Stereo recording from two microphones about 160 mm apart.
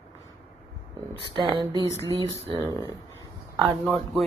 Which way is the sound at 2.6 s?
25° right (ahead or behind).